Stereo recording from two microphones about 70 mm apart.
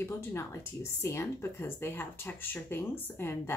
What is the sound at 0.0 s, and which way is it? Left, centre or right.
Speech, left.